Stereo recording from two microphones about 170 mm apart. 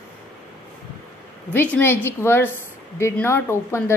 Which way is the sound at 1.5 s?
10° left (ahead or behind).